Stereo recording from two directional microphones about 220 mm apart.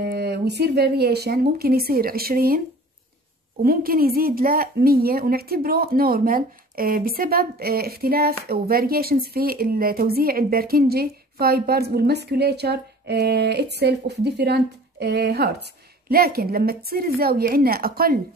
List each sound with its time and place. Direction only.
0.0 s a woman's voice: 45° right (ahead or behind)
3.6 s a woman's voice: 40° right (ahead or behind)